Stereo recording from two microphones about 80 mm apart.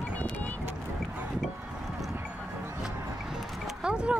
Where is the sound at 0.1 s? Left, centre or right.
Left.